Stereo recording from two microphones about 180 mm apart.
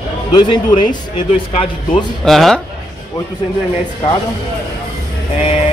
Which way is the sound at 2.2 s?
Centre (ahead or behind).